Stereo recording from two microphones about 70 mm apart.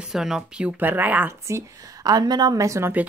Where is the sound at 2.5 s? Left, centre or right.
Right.